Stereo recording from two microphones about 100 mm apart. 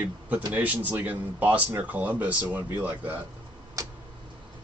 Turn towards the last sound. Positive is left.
turn(degrees=-15)  # may be behind; listen again after turning